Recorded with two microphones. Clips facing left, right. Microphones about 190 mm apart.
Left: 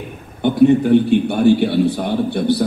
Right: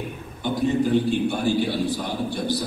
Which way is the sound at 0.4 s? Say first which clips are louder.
Left 10 dB; 60° left (ahead or behind).